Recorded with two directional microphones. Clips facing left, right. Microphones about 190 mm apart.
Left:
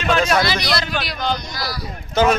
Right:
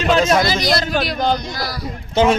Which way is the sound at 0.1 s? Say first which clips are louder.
Right 2 dB; 25° right (ahead or behind).